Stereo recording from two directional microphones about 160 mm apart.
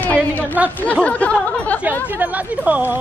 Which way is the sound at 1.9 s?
10° right (ahead or behind).